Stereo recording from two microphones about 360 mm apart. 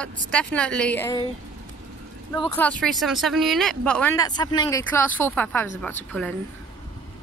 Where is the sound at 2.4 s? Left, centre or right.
Centre.